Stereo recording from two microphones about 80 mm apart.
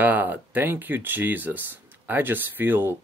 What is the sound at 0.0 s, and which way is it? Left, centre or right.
Speech, right.